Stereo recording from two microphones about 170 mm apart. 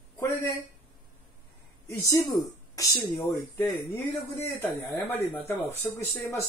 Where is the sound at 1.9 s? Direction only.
20° left (ahead or behind).